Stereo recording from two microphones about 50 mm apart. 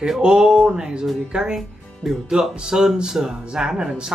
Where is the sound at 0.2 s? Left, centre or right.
Centre.